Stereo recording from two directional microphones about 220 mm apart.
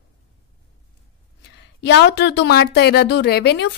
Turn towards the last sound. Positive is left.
turn(degrees=50)  # may be behind; listen again after turning